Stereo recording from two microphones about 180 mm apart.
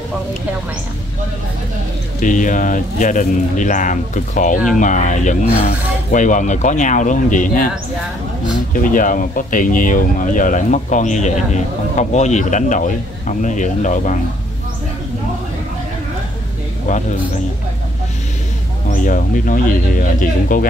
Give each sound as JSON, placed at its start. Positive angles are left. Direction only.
{"t": 2.2, "sound": "speech", "side_deg": 45}
{"t": 8.7, "sound": "speech", "side_deg": 50}
{"t": 19.0, "sound": "speech", "side_deg": 50}